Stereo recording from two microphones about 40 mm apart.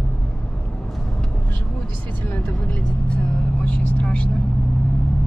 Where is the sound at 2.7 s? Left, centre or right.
Left.